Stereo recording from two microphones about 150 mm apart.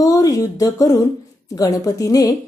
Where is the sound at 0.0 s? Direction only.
25° left (ahead or behind).